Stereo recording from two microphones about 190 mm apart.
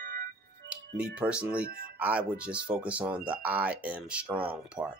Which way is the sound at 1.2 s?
5° right (ahead or behind).